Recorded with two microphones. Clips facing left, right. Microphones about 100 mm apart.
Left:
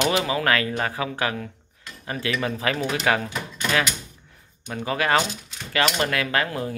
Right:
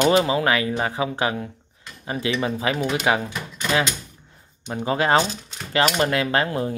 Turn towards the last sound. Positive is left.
turn(degrees=-25)  # may be behind; listen again after turning